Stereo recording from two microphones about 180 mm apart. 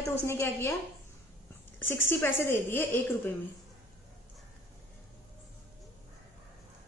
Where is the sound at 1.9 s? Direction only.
15° left (ahead or behind).